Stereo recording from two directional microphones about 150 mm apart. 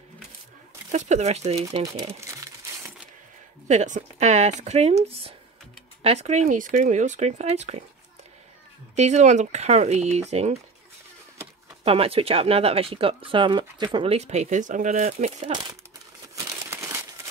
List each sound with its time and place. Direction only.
0.9 s speech: 50° right (ahead or behind)
2.1 s crumpling: 20° right (ahead or behind)
3.6 s speech: 55° right (ahead or behind)
8.9 s speech: 50° right (ahead or behind)
11.8 s speech: 40° right (ahead or behind); by 15.2 s 60° right (ahead or behind)
15.2 s speech: 35° right (ahead or behind)
16.3 s crumpling: 20° right (ahead or behind)